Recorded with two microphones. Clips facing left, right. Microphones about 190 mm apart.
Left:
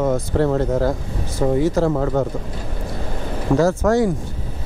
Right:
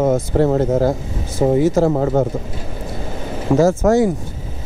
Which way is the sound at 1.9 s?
25° right (ahead or behind).